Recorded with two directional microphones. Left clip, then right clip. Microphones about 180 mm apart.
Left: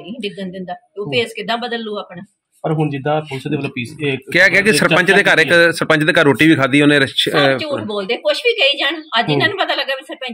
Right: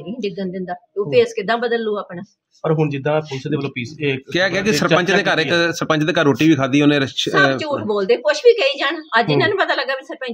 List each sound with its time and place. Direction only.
0.2 s a woman's voice: 10° right (ahead or behind)
2.6 s speech: 40° left (ahead or behind)
4.3 s speech: 5° left (ahead or behind)
7.6 s a woman's voice: 10° right (ahead or behind)